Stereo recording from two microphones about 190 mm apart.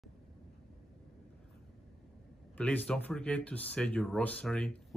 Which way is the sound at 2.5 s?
10° left (ahead or behind).